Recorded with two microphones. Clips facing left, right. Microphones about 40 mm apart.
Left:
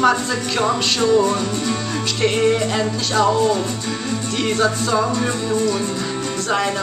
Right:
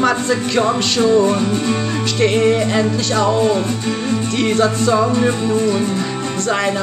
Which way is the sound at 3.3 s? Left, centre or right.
Right.